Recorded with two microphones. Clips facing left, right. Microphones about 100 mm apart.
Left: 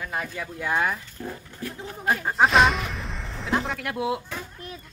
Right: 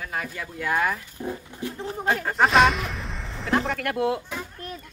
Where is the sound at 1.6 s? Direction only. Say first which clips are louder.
Right 2 dB; 20° right (ahead or behind).